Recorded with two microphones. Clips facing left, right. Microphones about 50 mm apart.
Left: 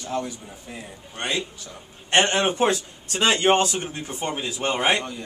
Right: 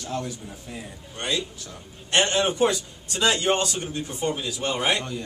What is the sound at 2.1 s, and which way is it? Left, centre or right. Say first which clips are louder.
Speech: left 2 dB; left.